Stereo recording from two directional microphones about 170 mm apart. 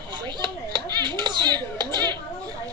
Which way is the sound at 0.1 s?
25° right (ahead or behind).